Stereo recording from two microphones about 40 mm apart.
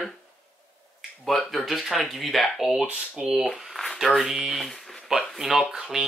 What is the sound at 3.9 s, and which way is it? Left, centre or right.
Speech, centre.